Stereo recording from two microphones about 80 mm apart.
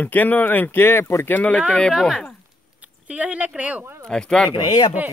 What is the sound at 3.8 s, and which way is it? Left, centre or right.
Speech, right.